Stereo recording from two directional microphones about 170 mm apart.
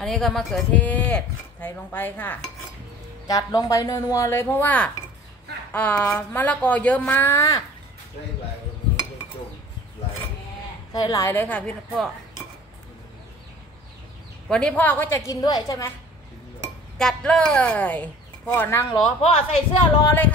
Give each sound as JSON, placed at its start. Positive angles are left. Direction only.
{"t": 0.0, "sound": "speech", "side_deg": 5}
{"t": 3.3, "sound": "speech", "side_deg": 20}
{"t": 10.9, "sound": "speech", "side_deg": 20}
{"t": 14.5, "sound": "speech", "side_deg": 5}
{"t": 17.0, "sound": "speech", "side_deg": 5}
{"t": 19.0, "sound": "a woman's voice", "side_deg": 35}